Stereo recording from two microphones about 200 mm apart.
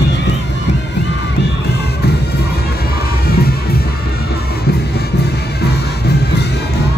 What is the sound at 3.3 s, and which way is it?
Music, 50° left (ahead or behind).